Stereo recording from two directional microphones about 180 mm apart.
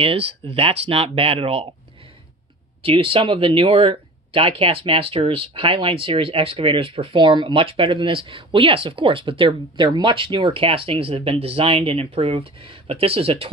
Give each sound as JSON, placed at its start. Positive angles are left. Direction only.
{"t": 0.0, "sound": "speech", "side_deg": -35}
{"t": 2.8, "sound": "speech", "side_deg": -30}